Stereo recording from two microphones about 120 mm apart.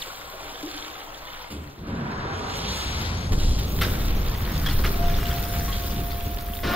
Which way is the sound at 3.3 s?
15° right (ahead or behind).